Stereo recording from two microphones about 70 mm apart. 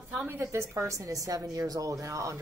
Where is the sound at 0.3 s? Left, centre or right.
Right.